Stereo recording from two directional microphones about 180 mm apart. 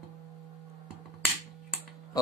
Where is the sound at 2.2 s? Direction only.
20° left (ahead or behind).